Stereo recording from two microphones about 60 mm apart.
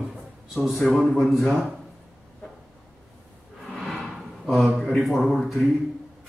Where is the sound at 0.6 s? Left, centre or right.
Centre.